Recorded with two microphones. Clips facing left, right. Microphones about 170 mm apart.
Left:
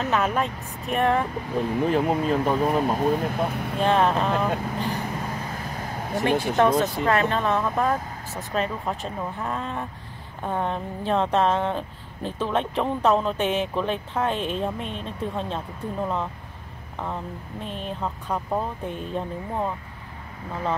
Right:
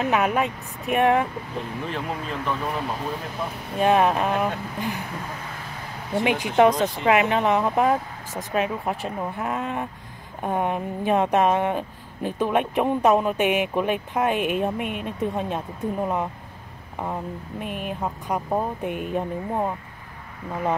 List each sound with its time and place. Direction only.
0.0 s speech: 15° right (ahead or behind)
1.9 s speech: 40° left (ahead or behind)
3.8 s speech: 10° right (ahead or behind)
6.2 s speech: 15° right (ahead or behind)